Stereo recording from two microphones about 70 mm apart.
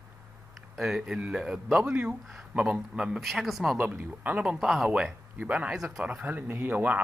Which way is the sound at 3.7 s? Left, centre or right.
Centre.